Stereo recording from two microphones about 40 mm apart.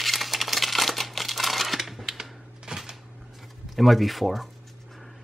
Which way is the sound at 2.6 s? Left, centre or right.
Centre.